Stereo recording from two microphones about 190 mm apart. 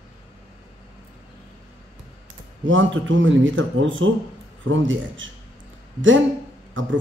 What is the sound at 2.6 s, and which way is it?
A man's voice, 80° right.